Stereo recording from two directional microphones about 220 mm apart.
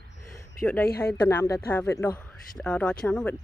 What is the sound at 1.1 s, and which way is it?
Speech, 10° left (ahead or behind).